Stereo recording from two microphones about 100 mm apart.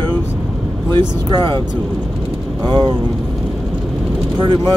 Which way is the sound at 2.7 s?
45° right (ahead or behind).